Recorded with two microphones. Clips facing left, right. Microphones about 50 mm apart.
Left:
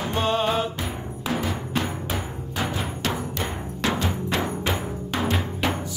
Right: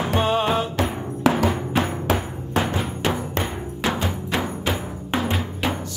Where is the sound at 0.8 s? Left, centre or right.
Right.